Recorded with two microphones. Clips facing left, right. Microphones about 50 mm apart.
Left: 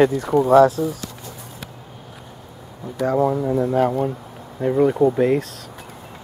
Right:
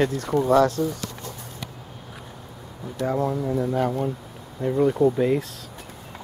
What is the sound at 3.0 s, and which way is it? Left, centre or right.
Speech, centre.